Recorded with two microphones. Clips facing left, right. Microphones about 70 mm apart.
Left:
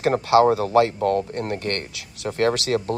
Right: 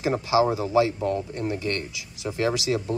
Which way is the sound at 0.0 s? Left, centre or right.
Left.